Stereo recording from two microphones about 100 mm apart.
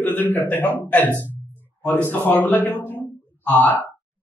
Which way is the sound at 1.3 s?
20° left (ahead or behind).